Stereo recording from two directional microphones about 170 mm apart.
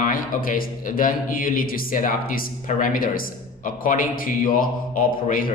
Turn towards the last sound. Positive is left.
turn(degrees=50)  # may be behind; listen again after turning